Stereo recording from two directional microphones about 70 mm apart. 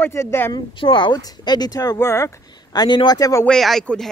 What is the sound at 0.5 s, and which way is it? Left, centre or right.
Speech, left.